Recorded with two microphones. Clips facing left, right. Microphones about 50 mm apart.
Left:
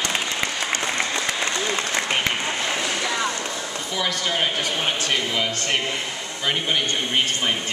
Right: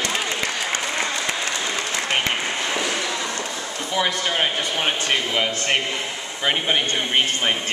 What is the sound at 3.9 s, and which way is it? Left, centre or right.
Speech, centre.